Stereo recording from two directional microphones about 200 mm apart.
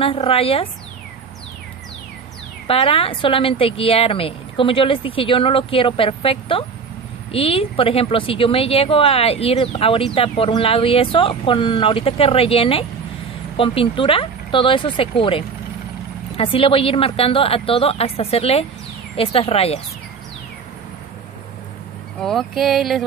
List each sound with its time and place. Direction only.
0.0 s a woman's voice: 30° left (ahead or behind)
2.7 s a woman's voice: 30° left (ahead or behind)
22.2 s a sound: centre (ahead or behind)